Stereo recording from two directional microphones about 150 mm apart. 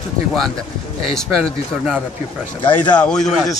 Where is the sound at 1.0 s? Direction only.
5° left (ahead or behind).